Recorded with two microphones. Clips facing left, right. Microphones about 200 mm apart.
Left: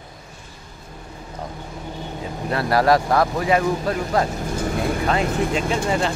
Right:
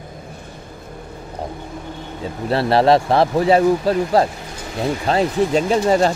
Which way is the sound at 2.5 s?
30° right (ahead or behind).